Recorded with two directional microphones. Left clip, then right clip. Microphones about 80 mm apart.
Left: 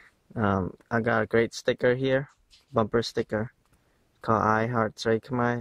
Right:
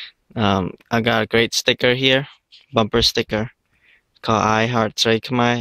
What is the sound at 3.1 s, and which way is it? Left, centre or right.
Speech, right.